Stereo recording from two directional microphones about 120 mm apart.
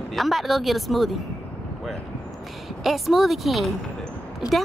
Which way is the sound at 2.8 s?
Centre (ahead or behind).